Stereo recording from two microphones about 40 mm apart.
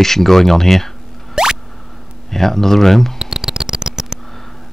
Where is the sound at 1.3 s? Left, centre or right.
Centre.